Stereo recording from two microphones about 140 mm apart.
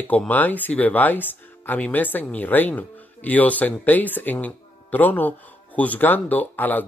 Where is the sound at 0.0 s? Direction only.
10° left (ahead or behind).